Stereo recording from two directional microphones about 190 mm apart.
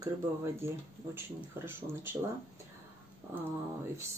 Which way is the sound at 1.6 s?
10° right (ahead or behind).